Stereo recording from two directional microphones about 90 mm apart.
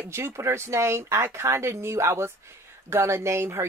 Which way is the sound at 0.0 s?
30° right (ahead or behind).